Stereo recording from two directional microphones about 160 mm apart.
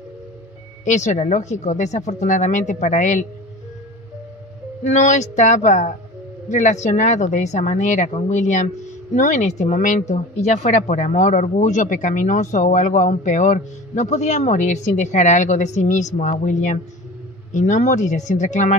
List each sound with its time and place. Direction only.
0.8 s a woman's voice: 50° left (ahead or behind)
4.8 s a woman's voice: 50° left (ahead or behind)